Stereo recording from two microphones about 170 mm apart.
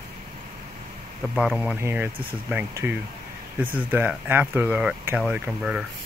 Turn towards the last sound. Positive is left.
turn(degrees=-5)  # may be behind; listen again after turning